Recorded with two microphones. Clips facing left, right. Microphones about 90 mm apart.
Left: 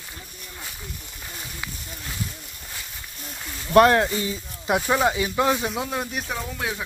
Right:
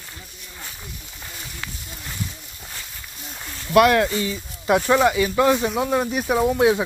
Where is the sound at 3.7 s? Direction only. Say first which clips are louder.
Even; 30° left (ahead or behind).